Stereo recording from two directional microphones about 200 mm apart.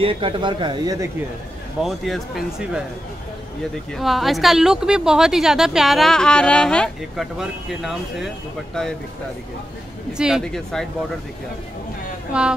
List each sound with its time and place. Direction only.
0.0 s a man's voice: 25° right (ahead or behind)
1.8 s a woman's voice: centre (ahead or behind)
3.9 s a woman's voice: centre (ahead or behind)
10.1 s a woman's voice: 5° right (ahead or behind)
12.3 s a woman's voice: 5° right (ahead or behind)